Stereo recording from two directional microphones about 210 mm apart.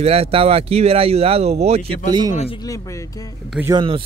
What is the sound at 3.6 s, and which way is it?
Speech, 15° right (ahead or behind).